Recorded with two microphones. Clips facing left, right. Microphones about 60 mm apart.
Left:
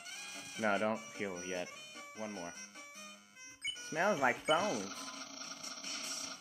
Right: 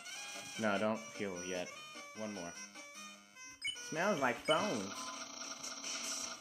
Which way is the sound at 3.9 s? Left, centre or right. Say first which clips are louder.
Left 3 dB; centre.